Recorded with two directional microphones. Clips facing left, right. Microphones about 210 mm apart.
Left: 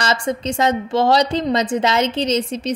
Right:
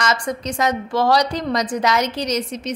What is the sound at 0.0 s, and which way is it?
Speech, 30° left (ahead or behind).